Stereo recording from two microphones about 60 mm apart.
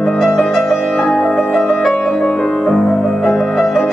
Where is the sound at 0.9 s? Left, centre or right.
Centre.